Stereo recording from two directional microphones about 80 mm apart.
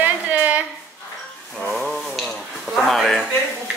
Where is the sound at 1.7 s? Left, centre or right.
Centre.